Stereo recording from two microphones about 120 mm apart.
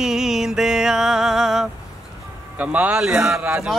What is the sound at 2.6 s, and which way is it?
Speech, 10° right (ahead or behind).